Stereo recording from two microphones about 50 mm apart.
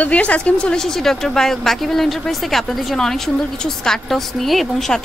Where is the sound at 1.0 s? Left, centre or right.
Centre.